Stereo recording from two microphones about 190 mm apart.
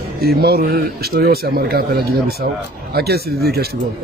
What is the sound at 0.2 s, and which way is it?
Speech, 55° right (ahead or behind).